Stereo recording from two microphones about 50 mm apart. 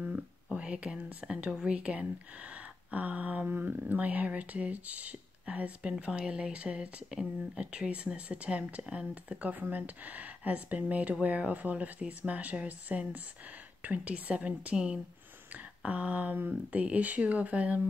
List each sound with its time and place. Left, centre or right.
0.0 s whispering: right
1.6 s speech: right
2.5 s a sound: right
5.4 s speech: right
11.2 s a sound: right
13.8 s speech: right